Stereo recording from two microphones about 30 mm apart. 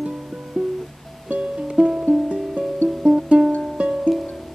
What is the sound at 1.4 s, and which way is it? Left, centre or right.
Music, right.